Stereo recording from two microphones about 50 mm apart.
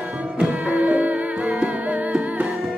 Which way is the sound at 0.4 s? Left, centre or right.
Right.